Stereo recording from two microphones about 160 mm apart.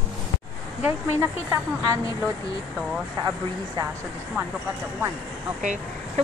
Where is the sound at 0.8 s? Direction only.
15° right (ahead or behind).